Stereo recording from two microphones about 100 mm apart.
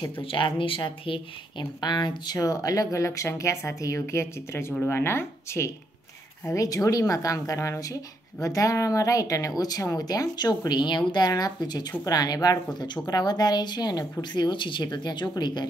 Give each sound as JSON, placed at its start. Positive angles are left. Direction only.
{"t": 0.2, "sound": "speech", "side_deg": 60}
{"t": 1.8, "sound": "speech", "side_deg": 45}